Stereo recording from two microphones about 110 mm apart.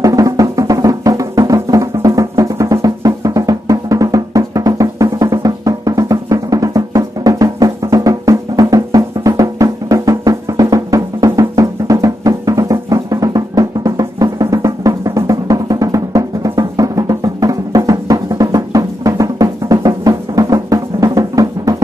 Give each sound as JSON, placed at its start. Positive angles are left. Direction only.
{"t": 0.0, "sound": "music", "side_deg": -30}